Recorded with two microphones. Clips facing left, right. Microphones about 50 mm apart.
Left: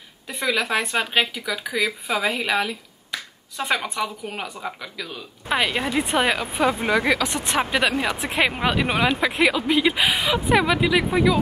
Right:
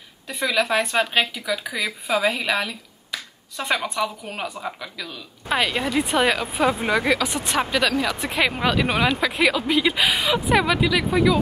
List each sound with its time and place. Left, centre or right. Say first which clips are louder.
0.3 s speech: right 1 dB; centre
5.5 s speech: even; centre
6.8 s speech: even; centre
7.2 s speech: even; centre
7.7 s speech: right 1 dB; left